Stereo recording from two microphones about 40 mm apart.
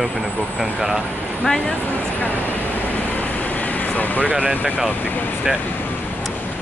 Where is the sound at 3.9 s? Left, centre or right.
Left.